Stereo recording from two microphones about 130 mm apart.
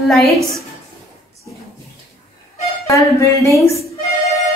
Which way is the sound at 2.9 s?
25° left (ahead or behind).